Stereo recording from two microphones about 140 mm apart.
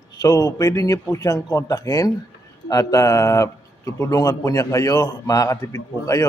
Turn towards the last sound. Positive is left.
turn(degrees=25)  # may be behind; listen again after turning